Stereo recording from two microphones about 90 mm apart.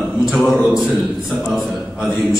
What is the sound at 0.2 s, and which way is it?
A man's voice, centre (ahead or behind).